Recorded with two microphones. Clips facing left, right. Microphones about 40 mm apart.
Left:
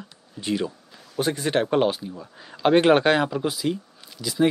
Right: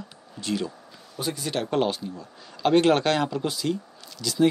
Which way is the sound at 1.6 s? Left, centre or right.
Centre.